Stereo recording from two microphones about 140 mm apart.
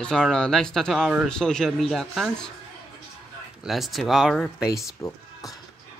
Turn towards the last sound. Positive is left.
turn(degrees=25)  # may be behind; listen again after turning